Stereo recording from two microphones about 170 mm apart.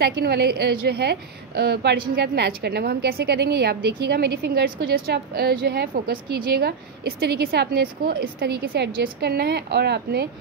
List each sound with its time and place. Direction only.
0.0 s a woman's voice: 70° right (ahead or behind)